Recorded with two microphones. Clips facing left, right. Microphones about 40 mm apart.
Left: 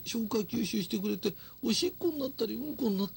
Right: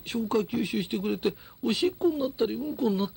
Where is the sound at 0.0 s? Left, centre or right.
Right.